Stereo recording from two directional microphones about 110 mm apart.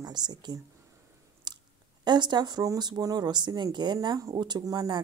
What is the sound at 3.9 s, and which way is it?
A woman's voice, 30° right (ahead or behind).